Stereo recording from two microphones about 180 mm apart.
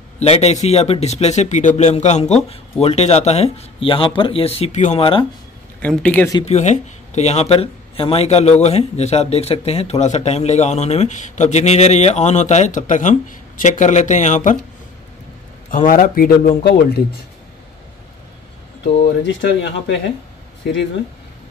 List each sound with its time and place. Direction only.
0.2 s speech: 35° left (ahead or behind)
5.8 s speech: 10° left (ahead or behind)
6.4 s speech: 40° left (ahead or behind)
15.7 s speech: 45° left (ahead or behind)
19.2 s speech: 80° left